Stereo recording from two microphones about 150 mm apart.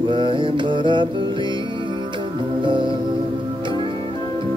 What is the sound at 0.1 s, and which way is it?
Mantra, 30° right (ahead or behind).